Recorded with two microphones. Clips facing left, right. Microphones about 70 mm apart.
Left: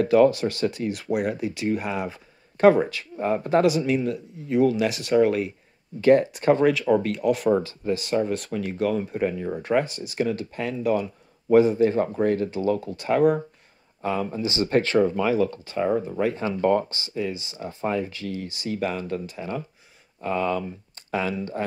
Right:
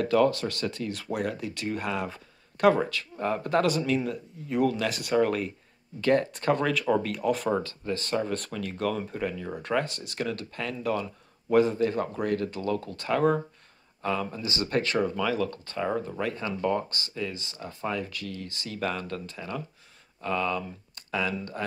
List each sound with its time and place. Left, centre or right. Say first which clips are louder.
0.0 s speech: left 5 dB; left
3.6 s speech: left 4 dB; centre
4.0 s speech: left 5 dB; centre
5.9 s speech: left 7 dB; centre
6.7 s speech: left 4 dB; centre
8.5 s speech: left 5 dB; centre
15.5 s speech: left 6 dB; centre
19.3 s speech: left 4 dB; left